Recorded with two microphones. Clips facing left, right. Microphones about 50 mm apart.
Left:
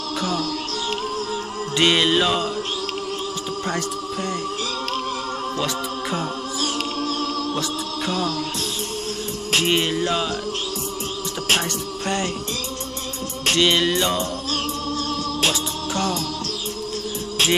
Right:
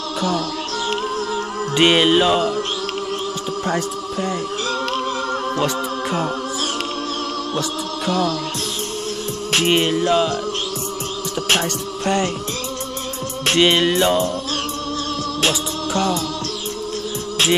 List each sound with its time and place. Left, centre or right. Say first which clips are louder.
0.8 s music: right 4 dB; right
9.6 s music: right 4 dB; centre
13.5 s music: right 3 dB; right